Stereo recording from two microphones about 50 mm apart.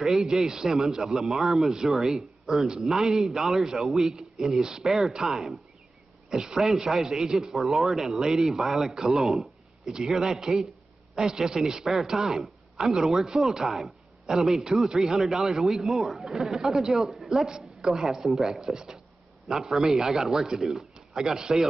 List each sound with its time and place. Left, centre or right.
0.0 s a man's voice: centre